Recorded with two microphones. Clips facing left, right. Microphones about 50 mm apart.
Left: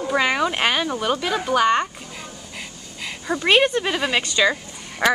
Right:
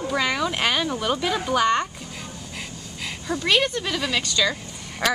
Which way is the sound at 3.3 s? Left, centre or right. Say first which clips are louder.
Left 4 dB; left.